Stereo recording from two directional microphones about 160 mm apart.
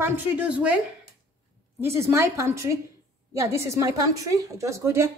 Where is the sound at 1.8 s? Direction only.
15° right (ahead or behind).